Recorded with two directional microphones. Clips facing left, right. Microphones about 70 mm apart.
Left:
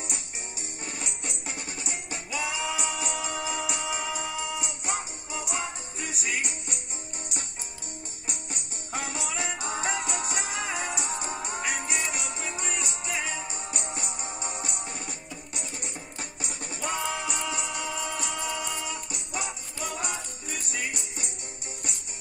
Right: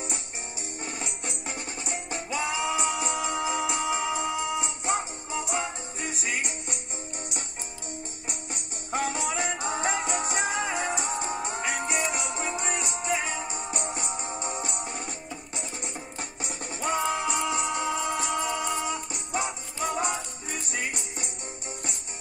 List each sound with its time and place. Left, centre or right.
0.0 s music: right
8.9 s music: right